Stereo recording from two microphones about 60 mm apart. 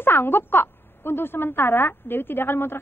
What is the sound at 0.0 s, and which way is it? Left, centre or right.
A woman's voice, left.